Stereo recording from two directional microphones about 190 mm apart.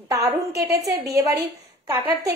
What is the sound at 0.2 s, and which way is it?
Speech, 55° right (ahead or behind).